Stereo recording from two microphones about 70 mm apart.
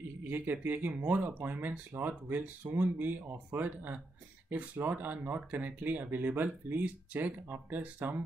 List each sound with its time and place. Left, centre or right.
0.2 s speech: right